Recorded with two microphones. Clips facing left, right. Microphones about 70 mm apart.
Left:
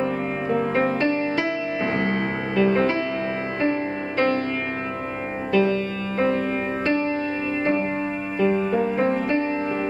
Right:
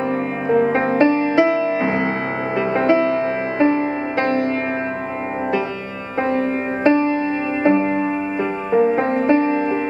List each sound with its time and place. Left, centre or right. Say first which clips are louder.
0.5 s music: right 6 dB; right
6.2 s music: right 3 dB; right
8.4 s music: right 2 dB; right